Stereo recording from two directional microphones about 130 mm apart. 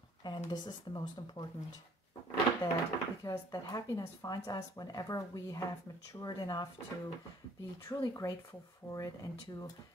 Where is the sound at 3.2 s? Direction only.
25° left (ahead or behind).